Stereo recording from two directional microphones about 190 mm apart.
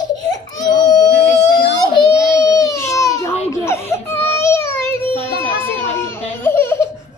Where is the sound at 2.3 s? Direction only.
20° left (ahead or behind).